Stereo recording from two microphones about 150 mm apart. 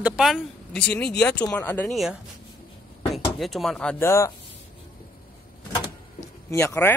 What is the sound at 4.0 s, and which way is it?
Speech, 20° left (ahead or behind).